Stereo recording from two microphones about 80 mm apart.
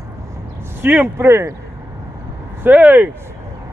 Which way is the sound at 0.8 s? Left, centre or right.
Right.